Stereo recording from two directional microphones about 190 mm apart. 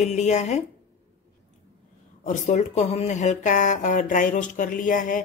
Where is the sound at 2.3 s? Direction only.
40° left (ahead or behind).